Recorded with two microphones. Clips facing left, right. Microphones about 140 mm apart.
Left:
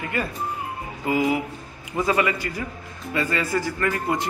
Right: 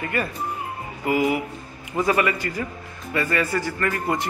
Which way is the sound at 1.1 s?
25° left (ahead or behind).